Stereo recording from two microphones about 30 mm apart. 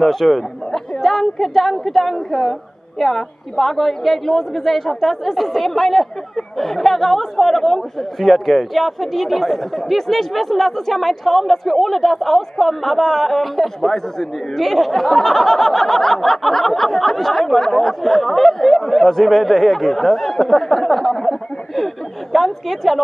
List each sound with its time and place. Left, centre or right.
0.0 s a woman's voice: centre
17.6 s speech: centre
18.0 s speech: centre